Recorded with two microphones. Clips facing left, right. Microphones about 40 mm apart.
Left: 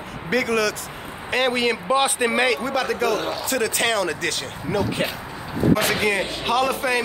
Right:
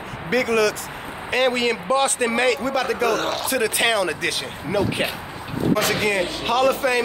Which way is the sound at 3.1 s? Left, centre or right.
Right.